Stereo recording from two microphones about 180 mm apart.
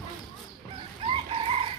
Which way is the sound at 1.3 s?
30° right (ahead or behind).